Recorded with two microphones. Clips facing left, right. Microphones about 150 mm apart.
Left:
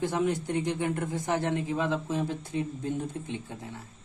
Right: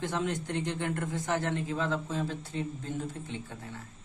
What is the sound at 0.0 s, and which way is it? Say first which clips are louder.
Speech: left 4 dB; 10° left (ahead or behind).